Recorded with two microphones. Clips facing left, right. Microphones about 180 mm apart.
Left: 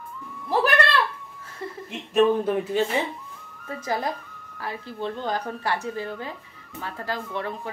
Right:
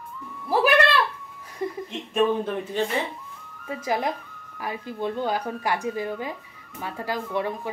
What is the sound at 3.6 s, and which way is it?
A woman's voice, 15° right (ahead or behind).